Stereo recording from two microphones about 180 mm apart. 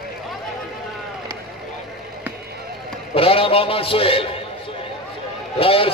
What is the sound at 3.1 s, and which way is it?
A man's voice, 30° left (ahead or behind).